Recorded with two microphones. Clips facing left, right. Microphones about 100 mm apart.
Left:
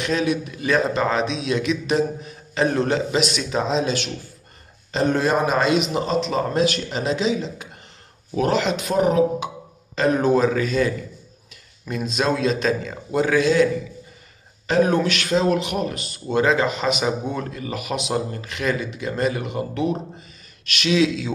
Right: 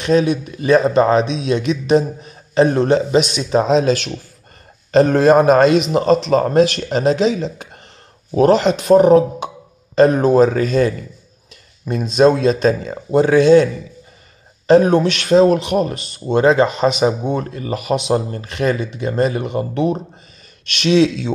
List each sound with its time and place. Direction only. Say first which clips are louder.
0.0 s a man's voice: right 7 dB; 30° right (ahead or behind)
3.5 s a man's voice: right 9 dB; 55° right (ahead or behind)
5.1 s a man's voice: right 9 dB; 50° right (ahead or behind); by 13.7 s 30° right (ahead or behind)
14.7 s a man's voice: right 7 dB; 30° right (ahead or behind)